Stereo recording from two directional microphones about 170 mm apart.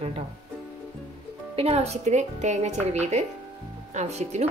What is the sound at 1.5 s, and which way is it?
A woman's voice, 35° right (ahead or behind).